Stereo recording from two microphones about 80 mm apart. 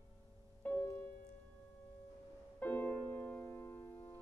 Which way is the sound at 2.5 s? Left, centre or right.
Left.